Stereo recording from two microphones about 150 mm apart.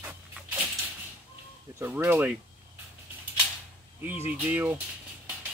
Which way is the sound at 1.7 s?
15° right (ahead or behind).